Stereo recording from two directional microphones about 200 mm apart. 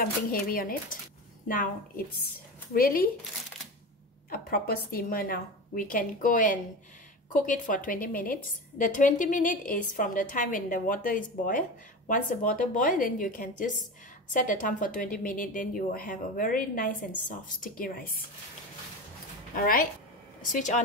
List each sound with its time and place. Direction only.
0.0 s a woman's voice: 45° left (ahead or behind)
4.3 s a woman's voice: 45° left (ahead or behind)
19.5 s a woman's voice: 45° left (ahead or behind)